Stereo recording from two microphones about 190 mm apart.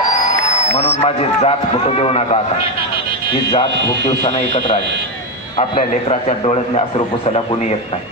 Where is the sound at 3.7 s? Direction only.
65° right (ahead or behind).